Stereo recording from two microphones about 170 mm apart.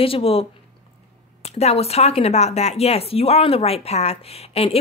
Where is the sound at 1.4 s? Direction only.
40° left (ahead or behind).